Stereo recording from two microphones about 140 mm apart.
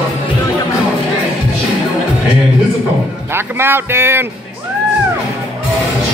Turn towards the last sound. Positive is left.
turn(degrees=-15)  # may be behind; listen again after turning